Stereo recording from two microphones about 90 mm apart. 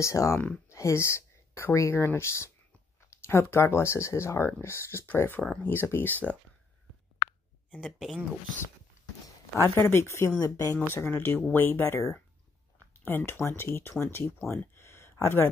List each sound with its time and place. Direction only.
0.0 s speech: 35° left (ahead or behind)
7.7 s speech: 5° right (ahead or behind)
9.6 s speech: 30° left (ahead or behind)
14.5 s a sound: 30° left (ahead or behind)